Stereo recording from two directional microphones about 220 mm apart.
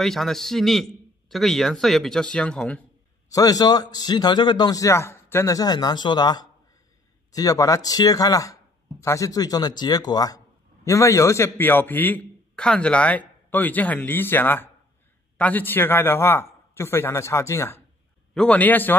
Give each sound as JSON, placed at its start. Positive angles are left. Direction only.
{"t": 0.0, "sound": "speech", "side_deg": 0}
{"t": 3.3, "sound": "speech", "side_deg": 15}